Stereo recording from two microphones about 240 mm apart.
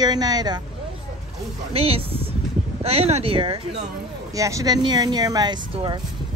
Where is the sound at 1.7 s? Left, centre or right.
Right.